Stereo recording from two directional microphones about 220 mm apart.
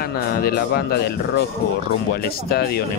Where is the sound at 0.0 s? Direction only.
45° left (ahead or behind).